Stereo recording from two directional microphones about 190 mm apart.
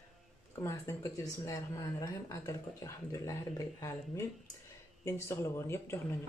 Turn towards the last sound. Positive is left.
turn(degrees=15)  # may be behind; listen again after turning